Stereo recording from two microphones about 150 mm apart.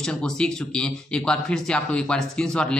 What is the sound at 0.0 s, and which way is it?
Speech, 5° left (ahead or behind).